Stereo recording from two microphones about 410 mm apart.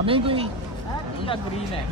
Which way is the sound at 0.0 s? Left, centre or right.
Centre.